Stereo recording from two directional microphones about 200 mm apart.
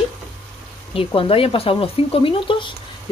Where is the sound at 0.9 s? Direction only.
25° left (ahead or behind).